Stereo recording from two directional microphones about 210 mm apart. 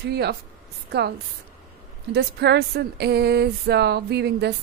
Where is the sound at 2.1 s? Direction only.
55° right (ahead or behind).